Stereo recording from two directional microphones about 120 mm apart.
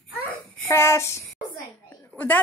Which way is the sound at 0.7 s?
25° left (ahead or behind).